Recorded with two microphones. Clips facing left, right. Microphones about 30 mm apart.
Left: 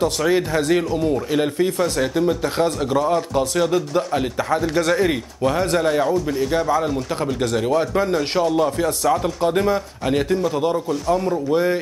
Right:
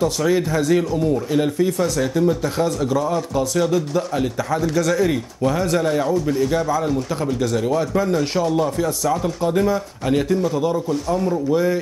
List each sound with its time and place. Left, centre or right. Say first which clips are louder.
0.0 s speech: even; left
0.9 s speech: right 1 dB; left
5.8 s a man's voice: left 1 dB; left
8.7 s speech: left 1 dB; left
10.0 s speech: right 1 dB; centre
11.5 s speech: left 1 dB; left